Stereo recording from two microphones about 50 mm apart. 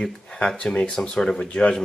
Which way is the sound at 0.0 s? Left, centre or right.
Centre.